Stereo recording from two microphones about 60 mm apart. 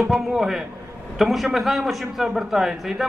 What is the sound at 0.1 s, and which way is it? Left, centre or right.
A man's voice, centre.